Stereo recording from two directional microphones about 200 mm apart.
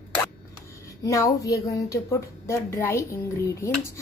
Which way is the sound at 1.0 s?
15° left (ahead or behind).